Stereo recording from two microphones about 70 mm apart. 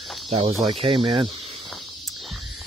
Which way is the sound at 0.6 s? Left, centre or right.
Right.